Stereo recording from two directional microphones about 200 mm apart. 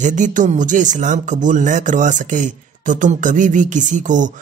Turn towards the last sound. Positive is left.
turn(degrees=-40)  # may be behind; listen again after turning